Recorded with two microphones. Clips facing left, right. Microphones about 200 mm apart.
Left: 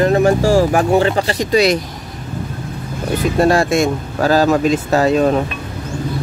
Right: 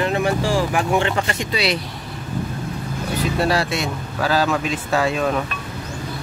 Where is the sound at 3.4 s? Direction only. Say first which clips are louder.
Left 9 dB; 45° left (ahead or behind).